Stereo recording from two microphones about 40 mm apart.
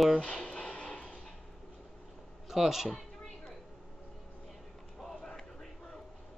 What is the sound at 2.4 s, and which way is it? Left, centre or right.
Speech, centre.